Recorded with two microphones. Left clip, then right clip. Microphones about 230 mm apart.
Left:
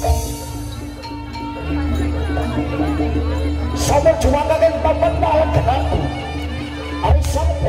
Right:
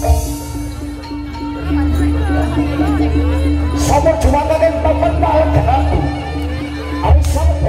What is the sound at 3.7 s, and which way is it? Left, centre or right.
Music, left.